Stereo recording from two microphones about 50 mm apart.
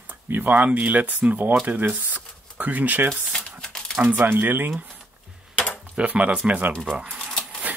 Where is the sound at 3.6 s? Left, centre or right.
Centre.